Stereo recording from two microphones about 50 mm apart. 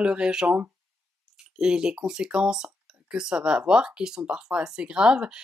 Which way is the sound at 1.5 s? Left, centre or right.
Centre.